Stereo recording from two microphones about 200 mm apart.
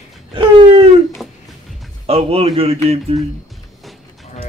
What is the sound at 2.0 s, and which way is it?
Speech, 30° right (ahead or behind).